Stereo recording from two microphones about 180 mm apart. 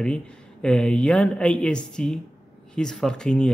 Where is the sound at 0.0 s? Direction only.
5° left (ahead or behind).